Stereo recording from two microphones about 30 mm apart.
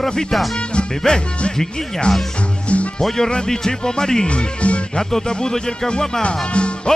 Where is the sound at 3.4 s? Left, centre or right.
Centre.